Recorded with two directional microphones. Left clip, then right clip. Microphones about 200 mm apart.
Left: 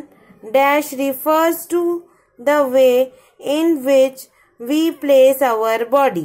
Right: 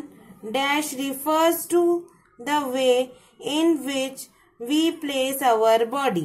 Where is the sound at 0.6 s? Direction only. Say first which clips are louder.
Left 9 dB; 20° left (ahead or behind).